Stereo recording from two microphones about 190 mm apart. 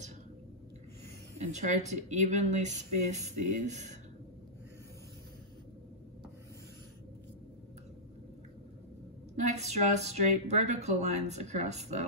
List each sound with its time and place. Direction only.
1.4 s speech: 35° right (ahead or behind)
9.5 s speech: 35° right (ahead or behind)